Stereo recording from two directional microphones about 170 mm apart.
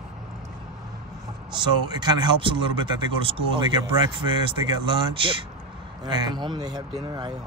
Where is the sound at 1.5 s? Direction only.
25° right (ahead or behind).